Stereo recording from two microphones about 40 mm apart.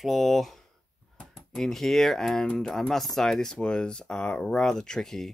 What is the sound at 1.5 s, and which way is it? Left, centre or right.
Speech, centre.